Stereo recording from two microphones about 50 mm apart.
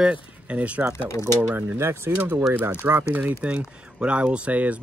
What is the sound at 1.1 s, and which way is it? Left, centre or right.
Speech, left.